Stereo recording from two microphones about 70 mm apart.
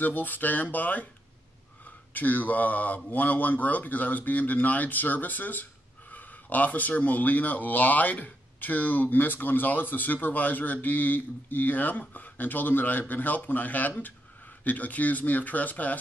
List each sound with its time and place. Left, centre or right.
0.0 s speech: left
2.1 s speech: left